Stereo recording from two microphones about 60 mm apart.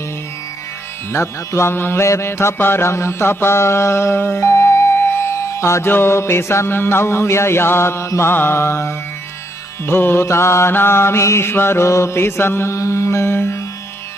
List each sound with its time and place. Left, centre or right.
1.1 s music: left
10.2 s music: left
12.7 s music: left